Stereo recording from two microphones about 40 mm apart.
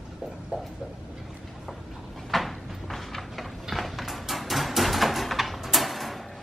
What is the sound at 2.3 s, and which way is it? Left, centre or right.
Cupboard open or close, centre.